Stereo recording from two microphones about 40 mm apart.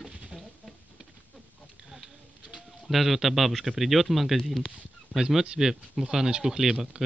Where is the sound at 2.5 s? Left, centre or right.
Centre.